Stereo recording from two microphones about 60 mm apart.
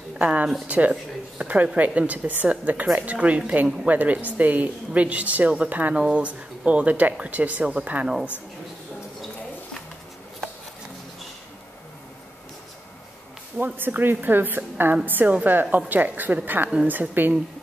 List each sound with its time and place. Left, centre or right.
0.2 s a woman's voice: right
5.9 s a woman's voice: centre
13.7 s a woman's voice: right